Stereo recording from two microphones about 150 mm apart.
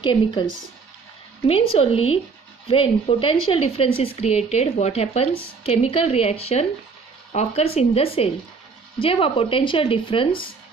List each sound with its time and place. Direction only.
0.0 s speech: 30° left (ahead or behind)
1.5 s speech: 35° left (ahead or behind)